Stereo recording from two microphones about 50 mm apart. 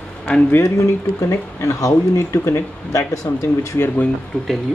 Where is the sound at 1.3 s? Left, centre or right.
Left.